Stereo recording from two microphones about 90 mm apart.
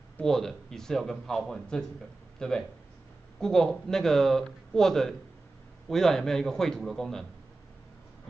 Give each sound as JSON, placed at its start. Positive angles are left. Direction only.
{"t": 0.2, "sound": "speech", "side_deg": 5}